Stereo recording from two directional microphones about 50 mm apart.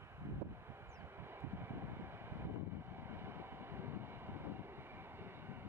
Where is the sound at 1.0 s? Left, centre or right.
Right.